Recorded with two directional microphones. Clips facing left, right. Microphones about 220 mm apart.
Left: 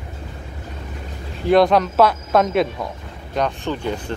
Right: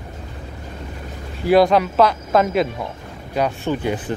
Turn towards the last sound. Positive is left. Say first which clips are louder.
# right 2 dB
turn(degrees=-10)  # may be behind; listen again after turning